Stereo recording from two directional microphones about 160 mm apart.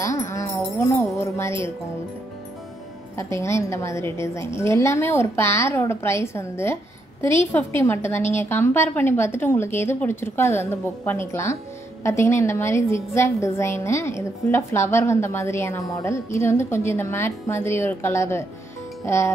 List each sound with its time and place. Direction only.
0.0 s music: 20° left (ahead or behind)
3.2 s a woman's voice: 15° left (ahead or behind)